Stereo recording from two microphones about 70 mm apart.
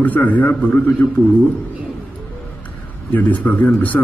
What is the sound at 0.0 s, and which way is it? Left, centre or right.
Speech, left.